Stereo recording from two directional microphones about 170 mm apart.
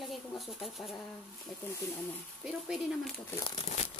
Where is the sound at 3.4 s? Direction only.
35° left (ahead or behind).